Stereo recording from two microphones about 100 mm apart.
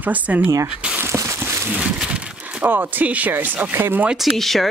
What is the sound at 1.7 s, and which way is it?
Speech, 10° right (ahead or behind).